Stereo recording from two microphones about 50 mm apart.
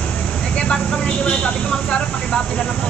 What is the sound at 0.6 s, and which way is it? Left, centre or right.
Vehicle, centre.